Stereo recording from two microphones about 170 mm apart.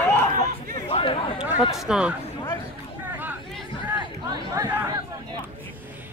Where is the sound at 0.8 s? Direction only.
35° left (ahead or behind).